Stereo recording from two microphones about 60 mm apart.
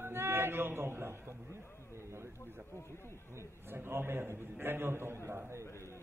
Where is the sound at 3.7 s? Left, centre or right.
Right.